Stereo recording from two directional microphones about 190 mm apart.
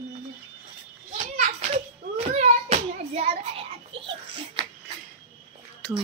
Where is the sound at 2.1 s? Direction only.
35° right (ahead or behind).